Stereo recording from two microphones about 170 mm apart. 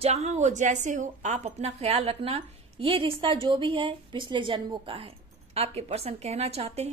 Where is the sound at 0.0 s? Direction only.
40° right (ahead or behind).